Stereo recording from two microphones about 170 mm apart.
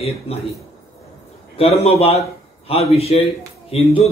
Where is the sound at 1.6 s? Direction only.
35° left (ahead or behind).